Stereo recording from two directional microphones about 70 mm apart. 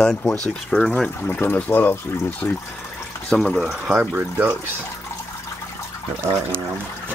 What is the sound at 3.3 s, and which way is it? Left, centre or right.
Speech, centre.